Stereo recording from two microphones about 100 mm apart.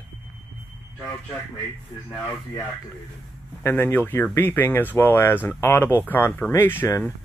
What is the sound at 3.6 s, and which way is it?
Speech, 20° left (ahead or behind).